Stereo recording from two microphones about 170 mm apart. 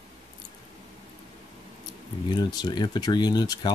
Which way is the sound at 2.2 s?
25° left (ahead or behind).